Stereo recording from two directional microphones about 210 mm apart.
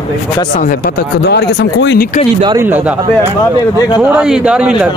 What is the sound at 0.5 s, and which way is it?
Speech, 40° left (ahead or behind).